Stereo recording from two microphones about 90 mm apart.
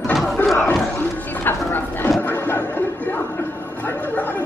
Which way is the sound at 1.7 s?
20° left (ahead or behind).